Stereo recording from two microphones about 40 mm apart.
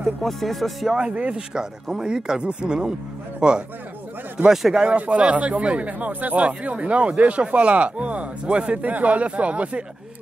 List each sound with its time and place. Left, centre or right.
0.2 s speech: centre
0.9 s speech: right
1.5 s speech: centre
4.5 s speech: centre
4.8 s speech: right